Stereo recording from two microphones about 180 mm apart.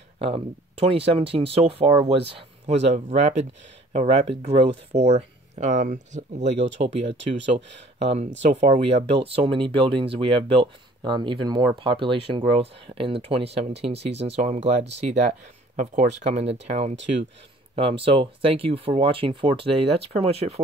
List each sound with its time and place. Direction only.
0.2 s speech: 30° right (ahead or behind)